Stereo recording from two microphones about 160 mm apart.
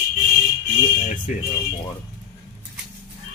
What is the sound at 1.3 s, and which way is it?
Speech, 55° left (ahead or behind).